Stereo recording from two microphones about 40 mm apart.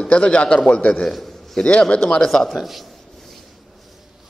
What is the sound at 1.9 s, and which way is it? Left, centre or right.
Speech, left.